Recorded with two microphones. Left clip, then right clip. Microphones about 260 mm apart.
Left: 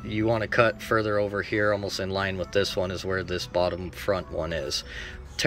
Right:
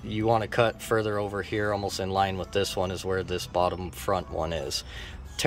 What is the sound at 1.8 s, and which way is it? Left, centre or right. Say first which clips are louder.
Speech: right 2 dB; centre.